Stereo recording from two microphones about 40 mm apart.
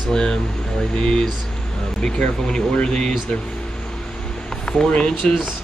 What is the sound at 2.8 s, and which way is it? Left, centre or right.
Speech, left.